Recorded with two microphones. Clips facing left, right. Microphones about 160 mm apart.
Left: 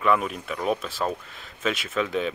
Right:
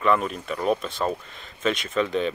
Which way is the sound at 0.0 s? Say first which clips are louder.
Right 1 dB; 5° left (ahead or behind).